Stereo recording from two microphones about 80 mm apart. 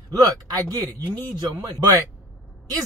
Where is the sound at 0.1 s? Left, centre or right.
Right.